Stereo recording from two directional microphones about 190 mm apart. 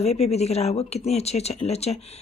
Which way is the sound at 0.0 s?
35° left (ahead or behind).